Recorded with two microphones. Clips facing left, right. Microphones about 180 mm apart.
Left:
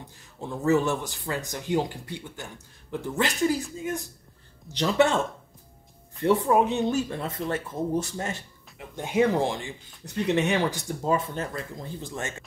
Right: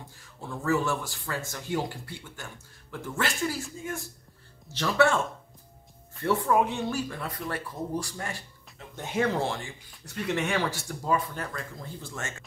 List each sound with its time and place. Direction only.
0.2 s speech: 20° left (ahead or behind)